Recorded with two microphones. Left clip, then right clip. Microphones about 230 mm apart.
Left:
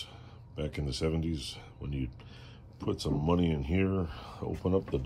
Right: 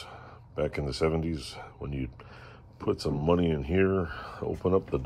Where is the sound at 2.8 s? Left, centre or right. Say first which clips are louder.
Right 4 dB; right.